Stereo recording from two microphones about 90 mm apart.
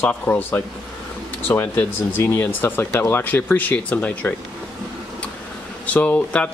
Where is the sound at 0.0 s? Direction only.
25° left (ahead or behind).